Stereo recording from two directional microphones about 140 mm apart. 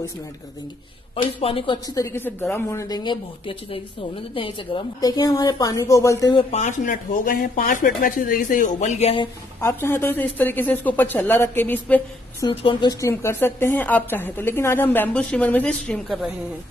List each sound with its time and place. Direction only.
1.1 s speech: 40° left (ahead or behind)
2.0 s a woman's voice: 20° left (ahead or behind)
6.3 s speech: 55° left (ahead or behind)
9.6 s a woman's voice: 15° left (ahead or behind)
12.4 s speech: 35° left (ahead or behind)
13.0 s a woman's voice: 20° left (ahead or behind)